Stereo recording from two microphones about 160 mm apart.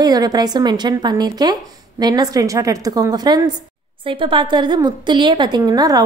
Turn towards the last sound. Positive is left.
turn(degrees=-20)  # may be behind; listen again after turning